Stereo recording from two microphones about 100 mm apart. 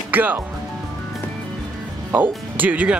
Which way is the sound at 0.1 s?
15° right (ahead or behind).